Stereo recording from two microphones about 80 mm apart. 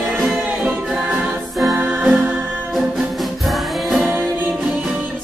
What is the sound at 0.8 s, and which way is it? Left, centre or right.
Music, centre.